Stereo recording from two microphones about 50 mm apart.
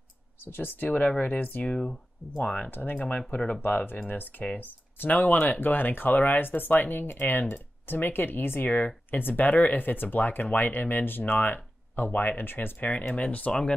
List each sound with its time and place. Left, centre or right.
0.5 s speech: left
1.7 s speech: centre
3.6 s speech: left
8.6 s speech: left
13.5 s speech: centre